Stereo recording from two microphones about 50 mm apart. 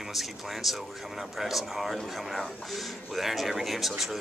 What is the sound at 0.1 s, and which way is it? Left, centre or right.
Speech, centre.